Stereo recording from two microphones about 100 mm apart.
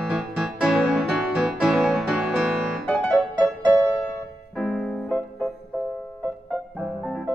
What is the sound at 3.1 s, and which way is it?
Music, 15° right (ahead or behind).